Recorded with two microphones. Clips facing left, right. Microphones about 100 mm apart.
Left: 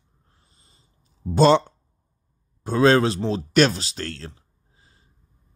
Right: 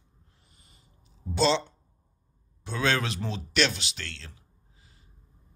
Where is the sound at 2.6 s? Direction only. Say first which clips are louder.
Left 11 dB; 40° left (ahead or behind).